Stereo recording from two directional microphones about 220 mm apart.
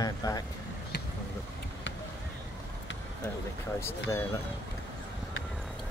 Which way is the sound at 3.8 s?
10° left (ahead or behind).